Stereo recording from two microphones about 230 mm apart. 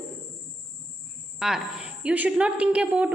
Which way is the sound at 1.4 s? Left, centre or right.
Centre.